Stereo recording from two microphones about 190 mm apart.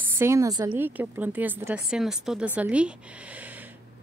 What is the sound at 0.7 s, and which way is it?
A woman's voice, 10° right (ahead or behind).